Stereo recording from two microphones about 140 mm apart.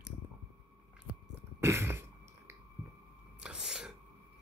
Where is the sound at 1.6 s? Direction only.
15° right (ahead or behind).